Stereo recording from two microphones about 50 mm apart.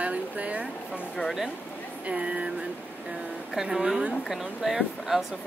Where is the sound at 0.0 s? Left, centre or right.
Right.